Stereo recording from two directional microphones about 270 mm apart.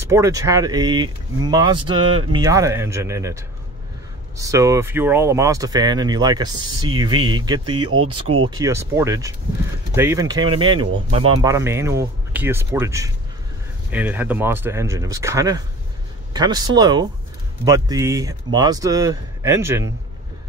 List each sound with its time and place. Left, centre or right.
0.0 s speech: centre
7.9 s speech: right
8.5 s speech: centre